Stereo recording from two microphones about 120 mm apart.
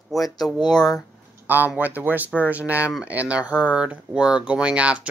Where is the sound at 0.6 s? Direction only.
35° left (ahead or behind).